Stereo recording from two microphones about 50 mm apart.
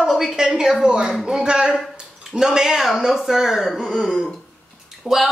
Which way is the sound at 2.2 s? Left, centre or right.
Centre.